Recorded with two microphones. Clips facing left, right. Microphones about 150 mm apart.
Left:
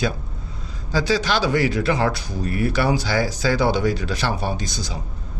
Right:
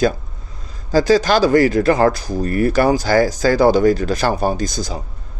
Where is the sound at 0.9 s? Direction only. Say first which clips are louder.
Right 7 dB; 45° right (ahead or behind).